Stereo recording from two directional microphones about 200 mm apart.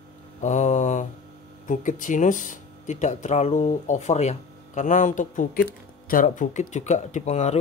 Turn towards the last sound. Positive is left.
turn(degrees=35)  # may be behind; listen again after turning